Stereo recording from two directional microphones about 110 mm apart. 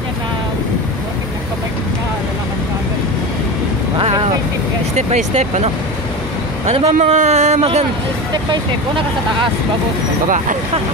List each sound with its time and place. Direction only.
4.9 s speech: 80° right
8.5 s speech: 50° right (ahead or behind)